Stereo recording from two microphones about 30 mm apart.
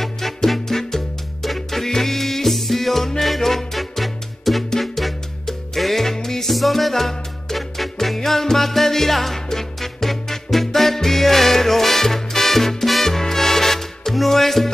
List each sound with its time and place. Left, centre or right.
0.0 s music: centre
6.5 s music: centre